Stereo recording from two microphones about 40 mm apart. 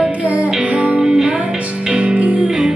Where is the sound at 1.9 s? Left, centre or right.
Right.